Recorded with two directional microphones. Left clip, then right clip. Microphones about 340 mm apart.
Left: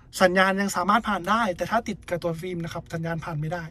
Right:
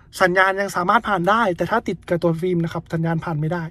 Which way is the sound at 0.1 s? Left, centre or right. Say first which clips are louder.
Right 4 dB; centre.